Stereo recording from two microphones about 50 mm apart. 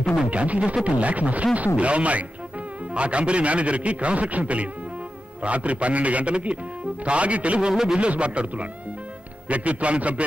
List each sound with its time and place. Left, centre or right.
0.3 s a man's voice: right
7.7 s a man's voice: centre
8.1 s a man's voice: right